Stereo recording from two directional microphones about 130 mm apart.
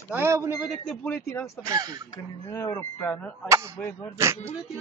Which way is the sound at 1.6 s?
30° right (ahead or behind).